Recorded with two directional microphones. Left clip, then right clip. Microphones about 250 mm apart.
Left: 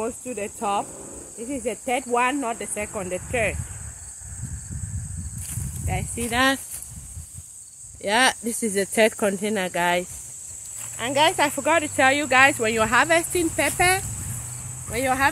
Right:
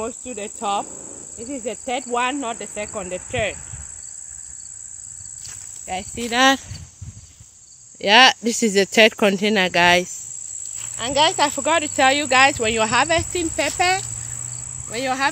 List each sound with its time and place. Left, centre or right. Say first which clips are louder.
0.0 s speech: even; centre
5.9 s speech: right 3 dB; right
6.3 s speech: right 5 dB; right
8.0 s speech: right 8 dB; right
11.0 s speech: right 2 dB; right; by 15.2 s centre